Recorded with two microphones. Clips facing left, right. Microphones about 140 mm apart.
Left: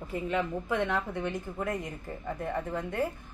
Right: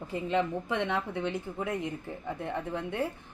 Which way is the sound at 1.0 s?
15° right (ahead or behind).